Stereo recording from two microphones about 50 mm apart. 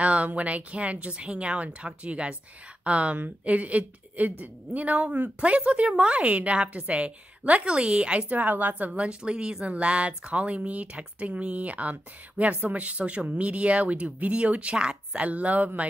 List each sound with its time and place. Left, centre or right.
0.0 s a woman's voice: right